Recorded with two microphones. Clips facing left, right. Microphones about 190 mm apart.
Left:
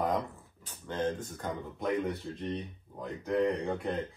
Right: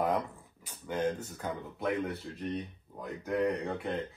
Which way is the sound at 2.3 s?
30° left (ahead or behind).